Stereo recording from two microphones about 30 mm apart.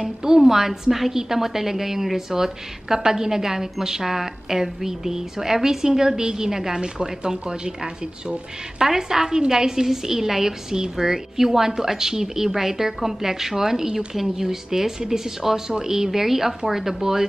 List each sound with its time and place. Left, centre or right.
0.0 s a woman's voice: centre
8.8 s a woman's voice: centre